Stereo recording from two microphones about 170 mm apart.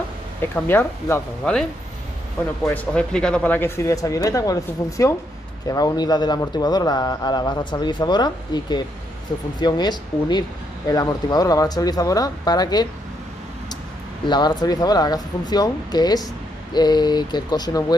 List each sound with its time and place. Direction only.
0.4 s speech: 15° left (ahead or behind)
2.6 s speech: 10° left (ahead or behind)
14.2 s speech: 25° left (ahead or behind)